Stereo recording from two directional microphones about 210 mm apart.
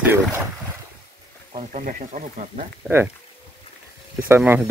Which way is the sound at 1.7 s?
40° right (ahead or behind).